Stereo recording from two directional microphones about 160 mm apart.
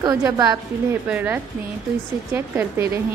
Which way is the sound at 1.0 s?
10° right (ahead or behind).